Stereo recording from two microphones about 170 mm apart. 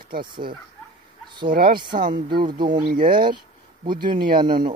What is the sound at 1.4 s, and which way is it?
Speech, 60° right (ahead or behind).